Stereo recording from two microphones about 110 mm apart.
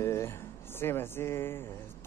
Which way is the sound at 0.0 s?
25° left (ahead or behind).